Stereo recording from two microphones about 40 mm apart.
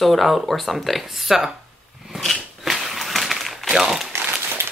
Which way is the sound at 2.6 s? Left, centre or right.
Centre.